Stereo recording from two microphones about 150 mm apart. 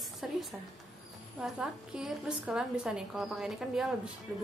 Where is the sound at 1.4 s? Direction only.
Centre (ahead or behind).